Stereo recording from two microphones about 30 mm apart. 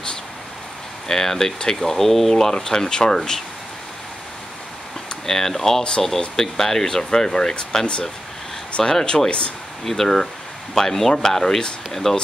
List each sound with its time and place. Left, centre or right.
1.0 s speech: centre
1.9 s speech: centre
2.5 s speech: centre
5.2 s speech: centre
9.1 s speech: left